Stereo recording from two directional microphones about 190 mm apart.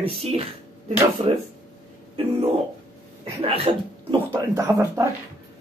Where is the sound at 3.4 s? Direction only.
30° right (ahead or behind).